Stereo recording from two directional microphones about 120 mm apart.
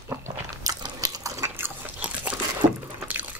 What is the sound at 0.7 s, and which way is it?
Drip, 30° right (ahead or behind).